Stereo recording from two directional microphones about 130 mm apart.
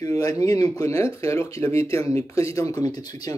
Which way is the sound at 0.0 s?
30° left (ahead or behind).